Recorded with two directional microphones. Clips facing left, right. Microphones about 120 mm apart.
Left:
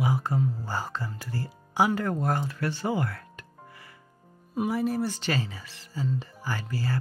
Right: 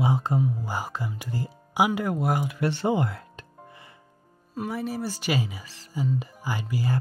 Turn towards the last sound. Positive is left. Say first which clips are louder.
# right 3 dB
turn(degrees=-15)  # may be behind; listen again after turning